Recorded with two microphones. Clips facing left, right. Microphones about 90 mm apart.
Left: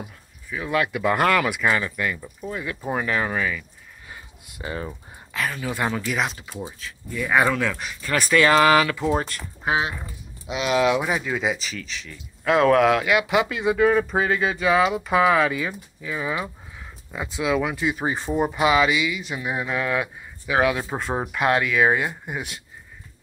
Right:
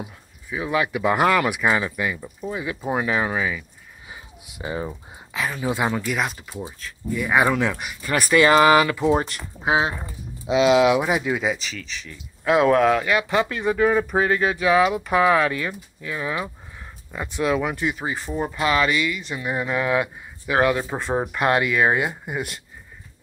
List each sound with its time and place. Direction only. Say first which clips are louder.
0.7 s speech: right 1 dB; 5° right (ahead or behind)
9.0 s speech: right 3 dB; 15° right (ahead or behind)
10.8 s speech: right 3 dB; 10° right (ahead or behind)
11.4 s speech: even; centre (ahead or behind)
17.8 s speech: left 2 dB; 20° left (ahead or behind); by 22.6 s centre (ahead or behind)